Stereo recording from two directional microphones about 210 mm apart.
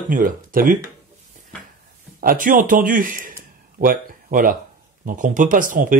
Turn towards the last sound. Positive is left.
turn(degrees=-40)  # may be behind; listen again after turning